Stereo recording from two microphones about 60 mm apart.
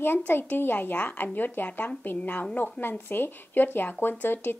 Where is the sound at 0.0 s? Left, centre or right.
Left.